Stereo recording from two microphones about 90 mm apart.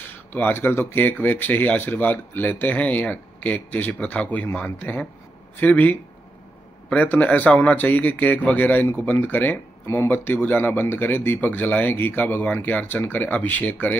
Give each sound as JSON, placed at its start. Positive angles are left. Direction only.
{"t": 0.0, "sound": "speech", "side_deg": 20}